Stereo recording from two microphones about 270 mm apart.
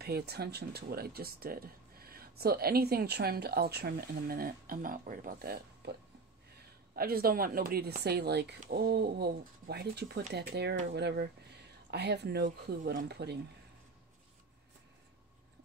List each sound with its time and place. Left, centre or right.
0.0 s speech: right
7.0 s speech: right